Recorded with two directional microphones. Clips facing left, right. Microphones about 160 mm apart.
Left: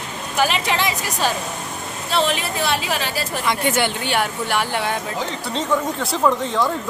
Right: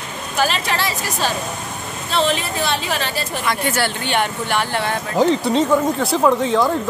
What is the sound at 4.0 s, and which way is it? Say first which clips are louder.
Speech: right 1 dB; 5° left (ahead or behind).